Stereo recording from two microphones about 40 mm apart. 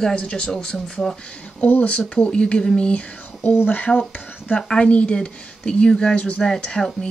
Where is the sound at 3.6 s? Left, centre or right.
Left.